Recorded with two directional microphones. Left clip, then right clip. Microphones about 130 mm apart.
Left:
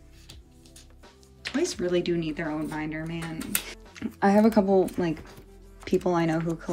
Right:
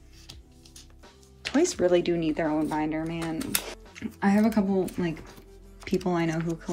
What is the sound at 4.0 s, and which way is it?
Speech, 25° left (ahead or behind).